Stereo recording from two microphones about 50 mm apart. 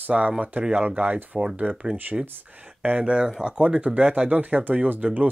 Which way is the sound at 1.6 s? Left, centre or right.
Right.